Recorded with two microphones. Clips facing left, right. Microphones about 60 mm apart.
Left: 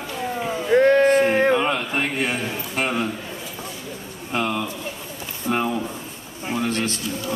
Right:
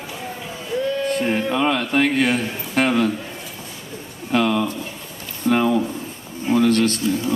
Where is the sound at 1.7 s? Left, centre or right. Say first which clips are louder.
Right 5 dB; right.